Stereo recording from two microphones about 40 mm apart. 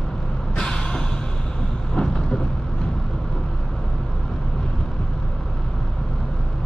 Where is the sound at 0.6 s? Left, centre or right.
Centre.